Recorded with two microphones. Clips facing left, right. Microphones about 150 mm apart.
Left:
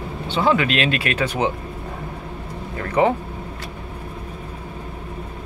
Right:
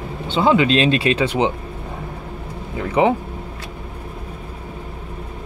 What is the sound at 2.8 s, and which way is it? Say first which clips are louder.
Speech: right 2 dB; 15° right (ahead or behind).